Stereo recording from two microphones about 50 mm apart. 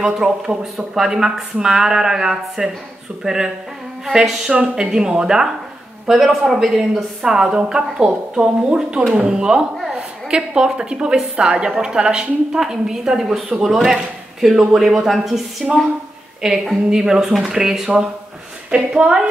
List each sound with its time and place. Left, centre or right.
0.0 s a woman's voice: centre
16.6 s speech: centre